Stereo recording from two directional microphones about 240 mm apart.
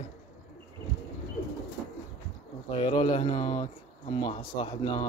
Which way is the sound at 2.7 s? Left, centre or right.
Left.